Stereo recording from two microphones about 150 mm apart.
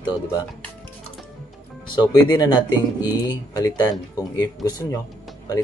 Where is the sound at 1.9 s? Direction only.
30° left (ahead or behind).